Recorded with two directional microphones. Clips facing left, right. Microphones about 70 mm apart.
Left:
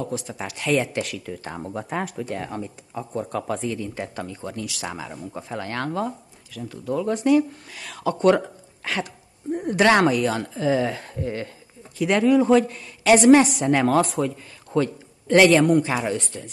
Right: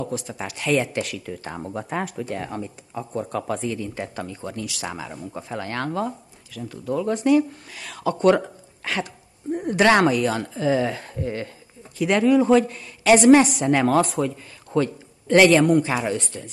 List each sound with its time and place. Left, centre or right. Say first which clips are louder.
0.0 s a woman's voice: even; centre